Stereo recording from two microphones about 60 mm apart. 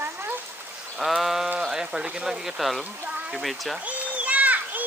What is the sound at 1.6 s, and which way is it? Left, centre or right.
Speech, centre.